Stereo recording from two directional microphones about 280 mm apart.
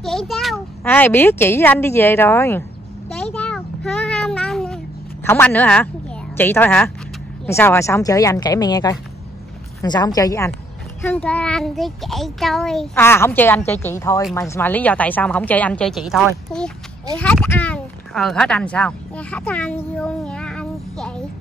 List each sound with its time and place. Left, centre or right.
0.0 s a child's voice: centre
3.1 s a sound: centre
5.2 s a child's voice: centre